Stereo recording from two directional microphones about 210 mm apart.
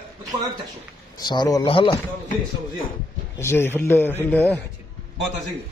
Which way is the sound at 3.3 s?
10° left (ahead or behind).